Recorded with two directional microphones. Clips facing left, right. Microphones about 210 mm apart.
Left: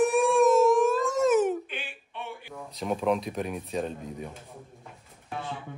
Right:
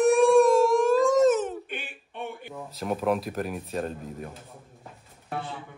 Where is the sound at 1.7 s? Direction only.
50° right (ahead or behind).